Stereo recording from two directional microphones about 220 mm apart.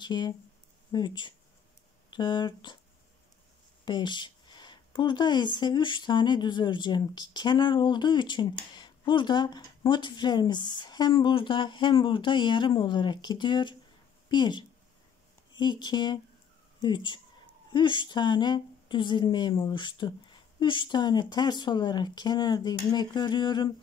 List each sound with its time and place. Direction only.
0.0 s speech: 20° left (ahead or behind)
3.8 s speech: 20° left (ahead or behind)
15.6 s speech: 20° left (ahead or behind)